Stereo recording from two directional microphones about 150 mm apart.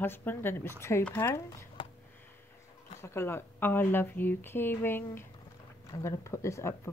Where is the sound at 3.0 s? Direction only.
15° left (ahead or behind).